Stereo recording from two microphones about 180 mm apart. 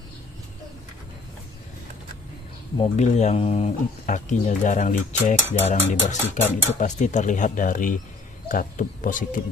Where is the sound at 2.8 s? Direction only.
40° left (ahead or behind).